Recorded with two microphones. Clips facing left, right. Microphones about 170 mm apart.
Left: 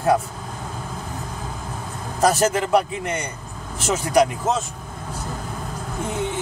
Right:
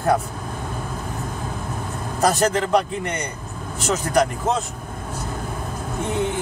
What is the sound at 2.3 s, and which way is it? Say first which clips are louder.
A man's voice: even; 5° left (ahead or behind).